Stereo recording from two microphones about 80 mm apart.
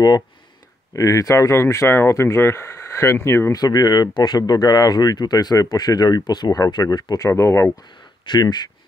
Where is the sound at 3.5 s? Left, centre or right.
Left.